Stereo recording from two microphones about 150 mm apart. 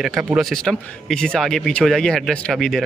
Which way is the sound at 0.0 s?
5° right (ahead or behind).